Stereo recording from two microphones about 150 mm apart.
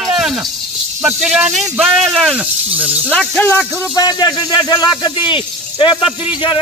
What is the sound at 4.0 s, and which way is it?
Speech, 25° left (ahead or behind).